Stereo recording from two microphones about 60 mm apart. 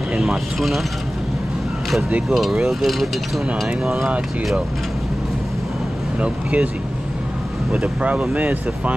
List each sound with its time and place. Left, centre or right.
0.1 s speech: centre
2.2 s speech: centre
6.2 s speech: right
7.7 s speech: right